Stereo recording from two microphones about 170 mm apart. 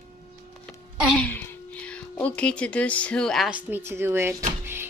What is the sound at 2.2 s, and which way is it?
A woman's voice, 5° left (ahead or behind).